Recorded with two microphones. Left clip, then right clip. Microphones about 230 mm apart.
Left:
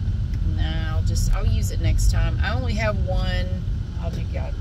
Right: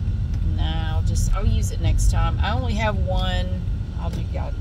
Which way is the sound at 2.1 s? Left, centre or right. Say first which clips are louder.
Right 4 dB; centre.